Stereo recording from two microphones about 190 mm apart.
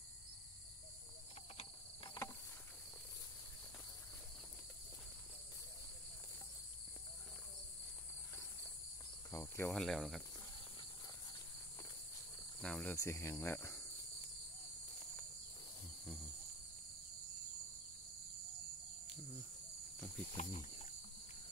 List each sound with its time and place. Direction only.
2.0 s insect: 15° left (ahead or behind)
9.3 s cricket: 15° left (ahead or behind)
9.7 s speech: centre (ahead or behind)
12.6 s speech: 5° left (ahead or behind)
12.9 s speech: 15° left (ahead or behind)
20.3 s cricket: 35° left (ahead or behind)